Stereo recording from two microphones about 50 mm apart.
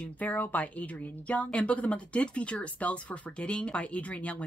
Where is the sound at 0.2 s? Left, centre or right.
Left.